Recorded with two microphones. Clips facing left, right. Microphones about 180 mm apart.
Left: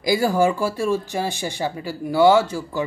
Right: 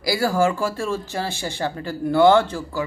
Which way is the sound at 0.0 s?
20° left (ahead or behind).